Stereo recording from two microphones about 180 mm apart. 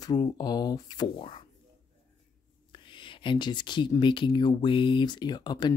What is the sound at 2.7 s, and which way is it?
Speech, 25° left (ahead or behind).